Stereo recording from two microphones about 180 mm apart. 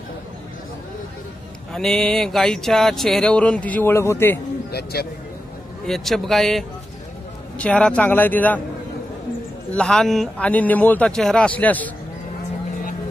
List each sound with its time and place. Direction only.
1.7 s speech: centre (ahead or behind)
4.6 s speech: 60° left (ahead or behind)
5.9 s a man's voice: centre (ahead or behind)
9.8 s a man's voice: 5° left (ahead or behind)